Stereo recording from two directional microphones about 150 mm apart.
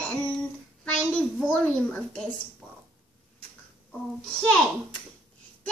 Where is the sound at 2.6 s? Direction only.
5° left (ahead or behind).